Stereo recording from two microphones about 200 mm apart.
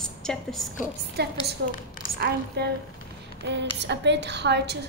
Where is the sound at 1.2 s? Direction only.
55° right (ahead or behind).